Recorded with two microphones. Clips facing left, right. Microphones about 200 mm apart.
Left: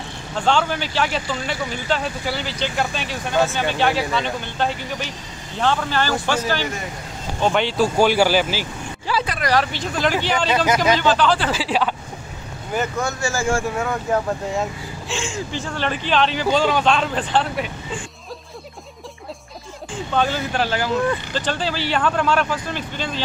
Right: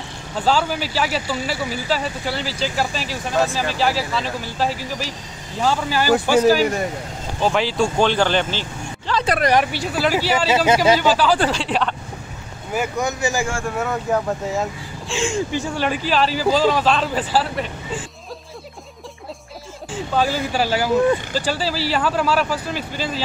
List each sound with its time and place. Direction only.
0.4 s speech: 5° right (ahead or behind)
9.5 s speech: 15° right (ahead or behind)
11.5 s speech: 5° left (ahead or behind)
12.7 s speech: 15° right (ahead or behind)
13.7 s speech: centre (ahead or behind)
15.5 s speech: 15° right (ahead or behind)
20.2 s speech: 5° right (ahead or behind)